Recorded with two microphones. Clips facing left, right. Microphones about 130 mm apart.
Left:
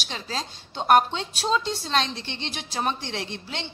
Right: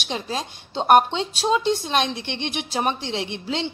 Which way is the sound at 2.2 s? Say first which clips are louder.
Right 6 dB; 65° right (ahead or behind).